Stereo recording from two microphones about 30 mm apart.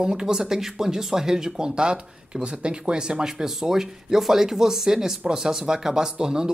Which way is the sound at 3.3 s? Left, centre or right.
Centre.